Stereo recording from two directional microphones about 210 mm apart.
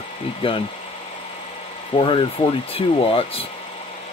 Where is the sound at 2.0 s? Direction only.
25° left (ahead or behind).